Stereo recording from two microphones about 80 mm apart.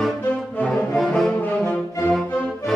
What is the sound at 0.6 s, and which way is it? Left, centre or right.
Music, centre.